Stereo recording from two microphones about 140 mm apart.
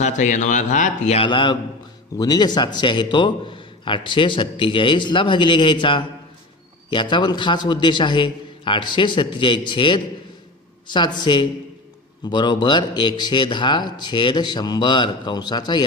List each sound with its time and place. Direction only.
0.0 s a man's voice: 60° left (ahead or behind)
1.2 s a man's voice: 35° left (ahead or behind)